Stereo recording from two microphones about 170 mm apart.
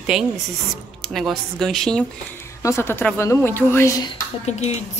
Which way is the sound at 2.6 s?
15° left (ahead or behind).